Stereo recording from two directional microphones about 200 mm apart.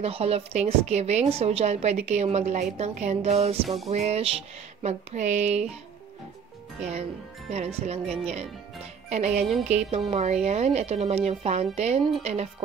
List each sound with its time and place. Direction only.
0.0 s speech: 30° right (ahead or behind)
3.6 s music: centre (ahead or behind)
3.9 s speech: 30° right (ahead or behind)
6.8 s speech: 35° right (ahead or behind)